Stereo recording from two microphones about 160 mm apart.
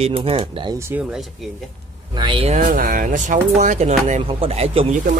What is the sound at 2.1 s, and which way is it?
Speech, 30° right (ahead or behind).